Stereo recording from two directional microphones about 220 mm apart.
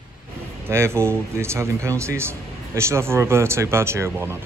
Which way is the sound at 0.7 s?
10° right (ahead or behind).